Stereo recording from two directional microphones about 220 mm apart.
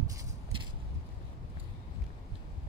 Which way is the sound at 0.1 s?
20° right (ahead or behind).